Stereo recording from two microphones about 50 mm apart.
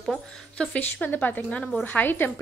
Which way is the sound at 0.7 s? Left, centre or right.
Left.